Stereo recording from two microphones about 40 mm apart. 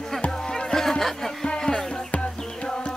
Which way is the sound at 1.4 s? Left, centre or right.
Left.